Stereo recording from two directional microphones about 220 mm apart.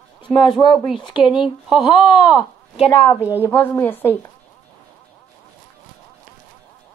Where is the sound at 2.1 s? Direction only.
20° left (ahead or behind).